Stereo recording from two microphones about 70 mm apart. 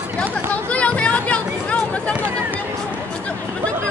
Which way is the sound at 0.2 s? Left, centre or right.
Centre.